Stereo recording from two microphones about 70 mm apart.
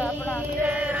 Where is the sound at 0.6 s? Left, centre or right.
Right.